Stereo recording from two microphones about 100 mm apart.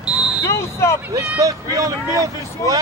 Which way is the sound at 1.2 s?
35° right (ahead or behind).